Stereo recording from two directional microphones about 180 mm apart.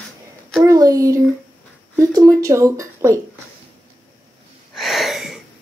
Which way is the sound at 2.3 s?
20° right (ahead or behind).